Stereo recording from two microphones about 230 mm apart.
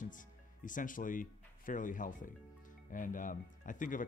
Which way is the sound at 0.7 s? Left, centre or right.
Left.